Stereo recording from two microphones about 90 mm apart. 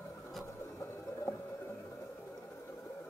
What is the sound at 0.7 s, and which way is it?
Music, 30° left (ahead or behind).